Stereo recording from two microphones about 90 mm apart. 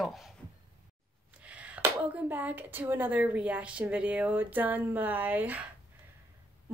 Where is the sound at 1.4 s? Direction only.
15° right (ahead or behind).